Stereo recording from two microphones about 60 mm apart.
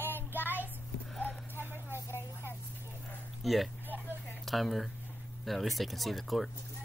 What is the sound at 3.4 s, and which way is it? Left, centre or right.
Speech, centre.